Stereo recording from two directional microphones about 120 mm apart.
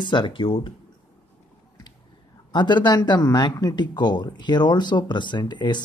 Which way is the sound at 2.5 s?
40° left (ahead or behind).